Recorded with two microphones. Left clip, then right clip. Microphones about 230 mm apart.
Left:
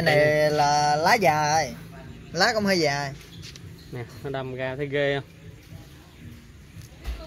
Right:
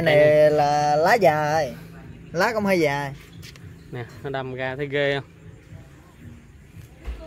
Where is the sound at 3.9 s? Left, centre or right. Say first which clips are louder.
Right 2 dB; centre.